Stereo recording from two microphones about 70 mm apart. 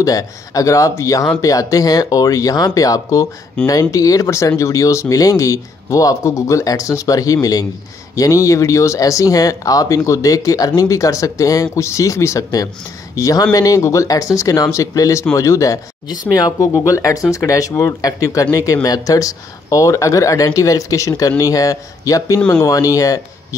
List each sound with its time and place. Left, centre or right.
0.0 s speech: left
3.6 s speech: centre
3.9 s speech: left
16.1 s speech: left
16.5 s speech: left